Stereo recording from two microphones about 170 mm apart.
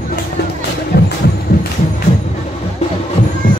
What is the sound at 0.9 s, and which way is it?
Vehicle, 75° left (ahead or behind).